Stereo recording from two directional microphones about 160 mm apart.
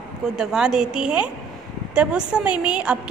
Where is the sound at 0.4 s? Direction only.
5° right (ahead or behind).